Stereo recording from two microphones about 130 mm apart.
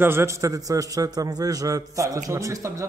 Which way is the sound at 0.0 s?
20° right (ahead or behind).